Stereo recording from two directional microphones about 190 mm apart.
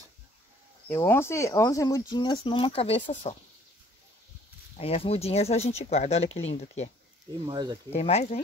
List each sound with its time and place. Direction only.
0.8 s speech: 10° left (ahead or behind); by 3.3 s 35° left (ahead or behind)
4.7 s speech: 30° left (ahead or behind)
7.4 s speech: 25° right (ahead or behind)
7.9 s speech: 35° left (ahead or behind)